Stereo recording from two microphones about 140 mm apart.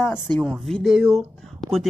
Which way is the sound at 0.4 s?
5° left (ahead or behind).